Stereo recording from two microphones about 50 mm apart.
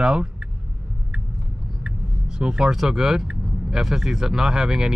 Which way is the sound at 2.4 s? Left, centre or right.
Centre.